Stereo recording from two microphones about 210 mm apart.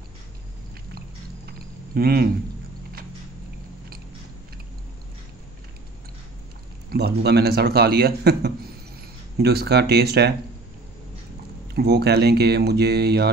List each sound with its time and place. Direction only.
2.0 s a man's voice: 45° right (ahead or behind)
6.9 s a man's voice: 50° right (ahead or behind)
11.7 s a man's voice: 50° right (ahead or behind)